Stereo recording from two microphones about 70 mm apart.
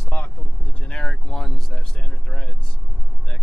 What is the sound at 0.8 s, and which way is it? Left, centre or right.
Speech, centre.